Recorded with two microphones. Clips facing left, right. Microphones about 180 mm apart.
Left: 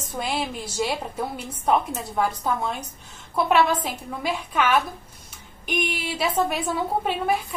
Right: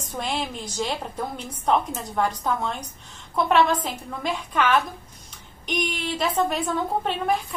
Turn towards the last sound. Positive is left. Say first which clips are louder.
# even
turn(degrees=5)  # may be behind; listen again after turning